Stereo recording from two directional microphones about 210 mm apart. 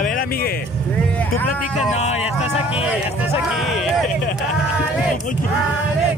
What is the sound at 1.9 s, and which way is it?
Speech, 30° left (ahead or behind).